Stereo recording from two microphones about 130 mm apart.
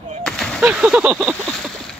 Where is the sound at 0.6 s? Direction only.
10° right (ahead or behind).